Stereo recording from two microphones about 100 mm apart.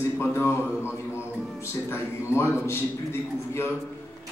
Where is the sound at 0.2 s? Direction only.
25° left (ahead or behind).